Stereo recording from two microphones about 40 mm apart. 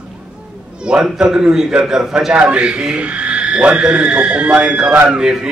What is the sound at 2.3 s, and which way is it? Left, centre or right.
A man's voice, right.